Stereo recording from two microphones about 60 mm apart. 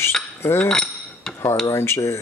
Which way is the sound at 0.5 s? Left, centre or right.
Centre.